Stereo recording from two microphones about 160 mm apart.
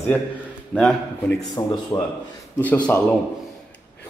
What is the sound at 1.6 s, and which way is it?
Speech, 25° left (ahead or behind).